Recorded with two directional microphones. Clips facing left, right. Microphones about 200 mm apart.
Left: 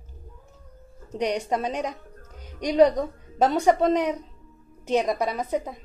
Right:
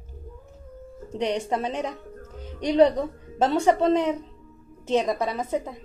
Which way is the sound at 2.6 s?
10° left (ahead or behind).